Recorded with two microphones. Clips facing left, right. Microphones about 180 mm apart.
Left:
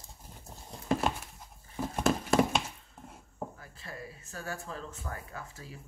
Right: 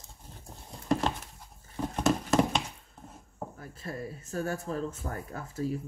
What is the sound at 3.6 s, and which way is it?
Speech, 40° right (ahead or behind).